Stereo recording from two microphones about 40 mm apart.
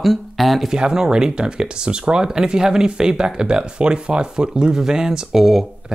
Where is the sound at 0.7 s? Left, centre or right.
Centre.